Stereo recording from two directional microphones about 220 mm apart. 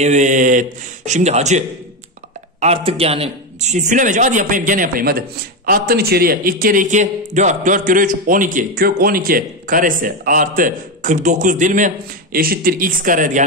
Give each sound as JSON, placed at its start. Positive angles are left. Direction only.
{"t": 0.0, "sound": "a man's voice", "side_deg": -35}
{"t": 2.6, "sound": "a man's voice", "side_deg": -25}